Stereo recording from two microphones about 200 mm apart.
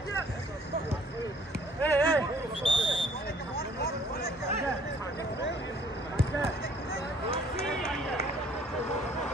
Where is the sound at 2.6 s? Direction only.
25° left (ahead or behind).